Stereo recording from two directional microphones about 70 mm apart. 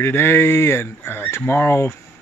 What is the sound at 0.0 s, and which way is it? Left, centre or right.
Speech, left.